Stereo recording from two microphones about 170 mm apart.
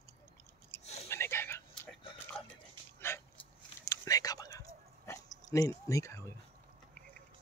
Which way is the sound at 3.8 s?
20° left (ahead or behind).